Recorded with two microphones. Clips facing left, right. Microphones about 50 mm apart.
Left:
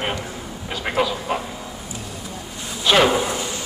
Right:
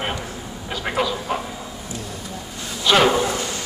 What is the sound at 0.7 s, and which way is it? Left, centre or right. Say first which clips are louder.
Vehicle: left 1 dB; centre.